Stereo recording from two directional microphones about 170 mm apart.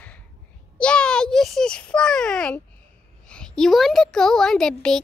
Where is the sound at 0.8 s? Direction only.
5° left (ahead or behind).